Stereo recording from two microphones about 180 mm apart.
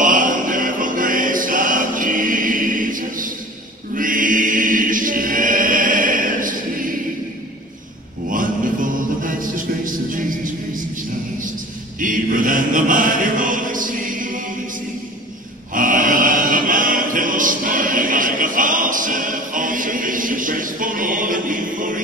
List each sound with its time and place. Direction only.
0.0 s music: 45° right (ahead or behind)
3.9 s choir: 50° right (ahead or behind)
8.3 s music: 50° right (ahead or behind)
12.0 s music: 45° right (ahead or behind)
15.7 s music: 50° right (ahead or behind)